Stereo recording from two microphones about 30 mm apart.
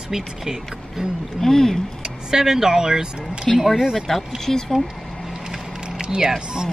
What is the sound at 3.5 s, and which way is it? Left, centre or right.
Speech, centre.